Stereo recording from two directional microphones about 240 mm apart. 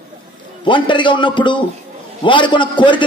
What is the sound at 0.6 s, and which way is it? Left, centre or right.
Speech, centre.